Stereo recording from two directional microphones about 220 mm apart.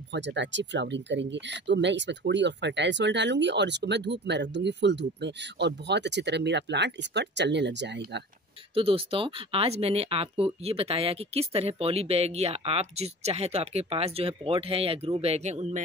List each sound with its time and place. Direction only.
0.1 s speech: 55° right (ahead or behind)
8.7 s speech: 25° right (ahead or behind)